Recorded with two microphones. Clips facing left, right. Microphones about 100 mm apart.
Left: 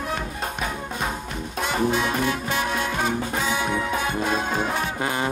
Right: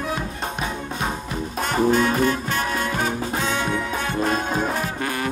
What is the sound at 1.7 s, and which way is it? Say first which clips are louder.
Music: right 5 dB; 40° right (ahead or behind).